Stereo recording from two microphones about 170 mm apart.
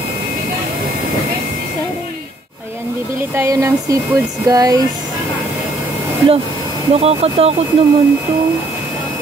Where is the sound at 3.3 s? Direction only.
15° right (ahead or behind).